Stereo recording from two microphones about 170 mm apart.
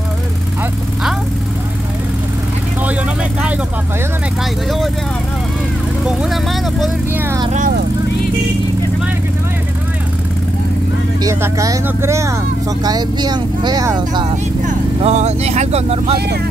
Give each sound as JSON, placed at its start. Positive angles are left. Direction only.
{"t": 6.0, "sound": "speech", "side_deg": 0}
{"t": 11.2, "sound": "speech", "side_deg": -20}
{"t": 14.3, "sound": "speech", "side_deg": -40}